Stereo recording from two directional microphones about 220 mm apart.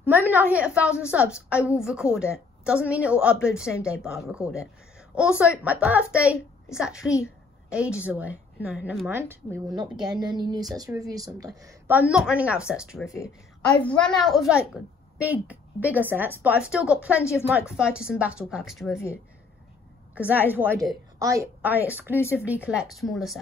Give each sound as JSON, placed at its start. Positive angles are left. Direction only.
{"t": 0.0, "sound": "a woman's voice", "side_deg": -10}
{"t": 10.2, "sound": "a woman's voice", "side_deg": -20}
{"t": 17.2, "sound": "a woman's voice", "side_deg": 10}
{"t": 17.5, "sound": "a woman's voice", "side_deg": -5}
{"t": 20.2, "sound": "a woman's voice", "side_deg": -5}